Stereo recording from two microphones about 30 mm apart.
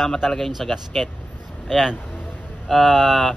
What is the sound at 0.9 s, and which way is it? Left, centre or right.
Speech, centre.